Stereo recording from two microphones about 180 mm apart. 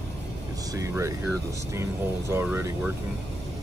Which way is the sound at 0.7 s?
15° right (ahead or behind).